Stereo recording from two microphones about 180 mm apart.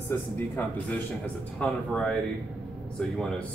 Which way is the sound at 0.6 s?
5° left (ahead or behind).